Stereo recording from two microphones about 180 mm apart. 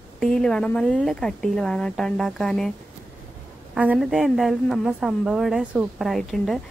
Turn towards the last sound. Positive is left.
turn(degrees=0)  # may be behind; listen again after turning